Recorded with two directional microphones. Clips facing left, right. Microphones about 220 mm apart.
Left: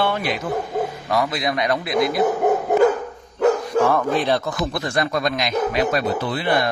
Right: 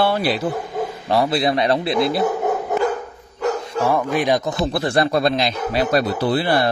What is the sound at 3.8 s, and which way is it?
Speech, 10° right (ahead or behind).